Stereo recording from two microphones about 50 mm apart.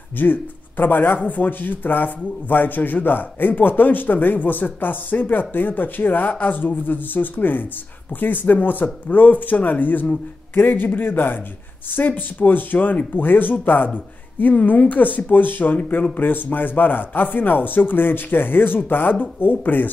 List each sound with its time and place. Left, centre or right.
0.2 s speech: left